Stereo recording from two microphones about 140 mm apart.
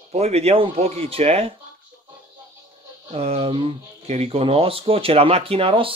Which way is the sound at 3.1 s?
45° right (ahead or behind).